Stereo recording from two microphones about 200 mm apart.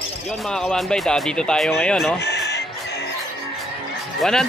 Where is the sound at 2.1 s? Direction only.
55° left (ahead or behind).